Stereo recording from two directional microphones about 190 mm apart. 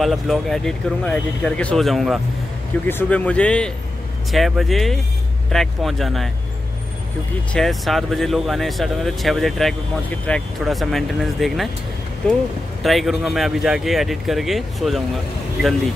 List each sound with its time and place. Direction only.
0.0 s speech: centre (ahead or behind)
7.5 s speech: centre (ahead or behind)
12.8 s speech: centre (ahead or behind)